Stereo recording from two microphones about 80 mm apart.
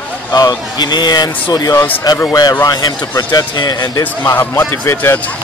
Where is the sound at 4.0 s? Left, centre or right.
Left.